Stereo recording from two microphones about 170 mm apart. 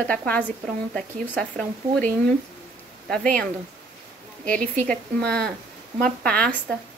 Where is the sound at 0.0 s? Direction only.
5° left (ahead or behind).